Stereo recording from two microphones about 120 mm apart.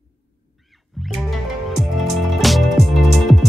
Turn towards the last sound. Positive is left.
turn(degrees=0)  # may be behind; listen again after turning